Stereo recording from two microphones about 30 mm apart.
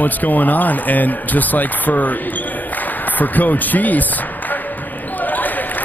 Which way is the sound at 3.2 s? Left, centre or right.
Left.